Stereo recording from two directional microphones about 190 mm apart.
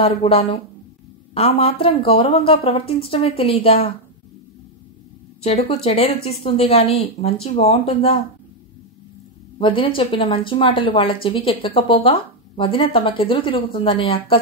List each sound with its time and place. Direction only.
0.0 s speech: 30° left (ahead or behind)
5.4 s speech: 35° left (ahead or behind)
9.6 s speech: 30° left (ahead or behind)